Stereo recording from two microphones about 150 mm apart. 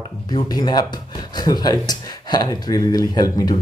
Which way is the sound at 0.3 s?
25° left (ahead or behind).